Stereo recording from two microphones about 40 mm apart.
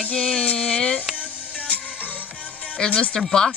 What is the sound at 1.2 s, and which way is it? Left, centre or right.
Music, left.